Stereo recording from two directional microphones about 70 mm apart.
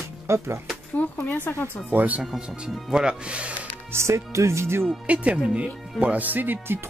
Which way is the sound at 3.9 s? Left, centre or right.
Right.